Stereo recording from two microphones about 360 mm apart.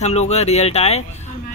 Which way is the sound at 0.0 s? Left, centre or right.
Centre.